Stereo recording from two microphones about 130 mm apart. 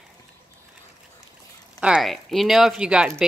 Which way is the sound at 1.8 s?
5° right (ahead or behind).